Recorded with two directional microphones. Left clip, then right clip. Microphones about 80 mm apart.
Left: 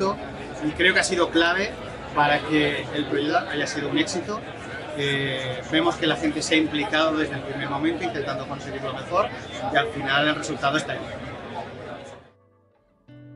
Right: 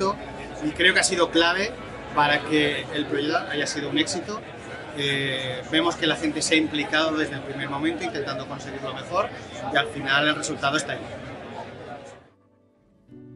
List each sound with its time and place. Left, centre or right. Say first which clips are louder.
0.7 s a man's voice: even; centre